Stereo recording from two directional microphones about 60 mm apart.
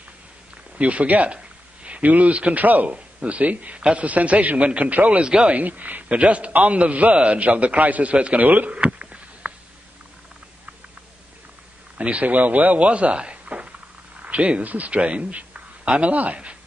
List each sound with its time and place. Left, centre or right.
0.7 s speech: right
12.0 s a man's voice: right